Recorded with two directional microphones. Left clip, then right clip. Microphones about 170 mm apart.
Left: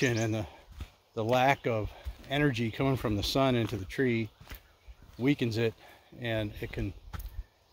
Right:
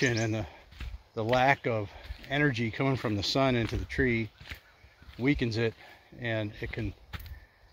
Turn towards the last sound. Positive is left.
turn(degrees=-5)  # may be behind; listen again after turning